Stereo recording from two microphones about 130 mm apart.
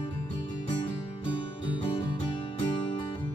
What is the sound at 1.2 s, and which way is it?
Music, 40° left (ahead or behind).